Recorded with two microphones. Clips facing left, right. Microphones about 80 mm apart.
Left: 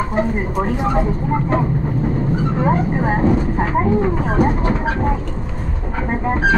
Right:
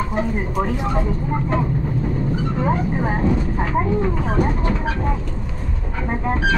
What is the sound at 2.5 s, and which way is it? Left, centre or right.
Speech, left.